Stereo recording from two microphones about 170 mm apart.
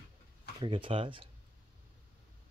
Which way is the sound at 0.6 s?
30° right (ahead or behind).